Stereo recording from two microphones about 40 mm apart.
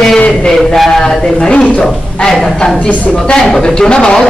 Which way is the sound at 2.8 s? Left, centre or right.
Left.